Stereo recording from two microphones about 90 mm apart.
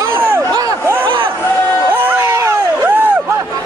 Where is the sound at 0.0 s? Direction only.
25° right (ahead or behind).